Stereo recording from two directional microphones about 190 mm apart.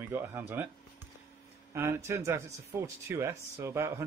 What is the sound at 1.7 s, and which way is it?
Speech, 15° right (ahead or behind).